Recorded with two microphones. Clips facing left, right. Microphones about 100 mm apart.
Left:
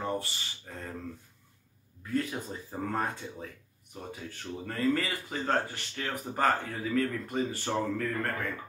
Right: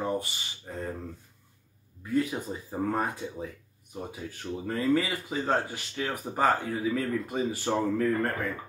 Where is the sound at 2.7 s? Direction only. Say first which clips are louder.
Right 3 dB; 10° right (ahead or behind).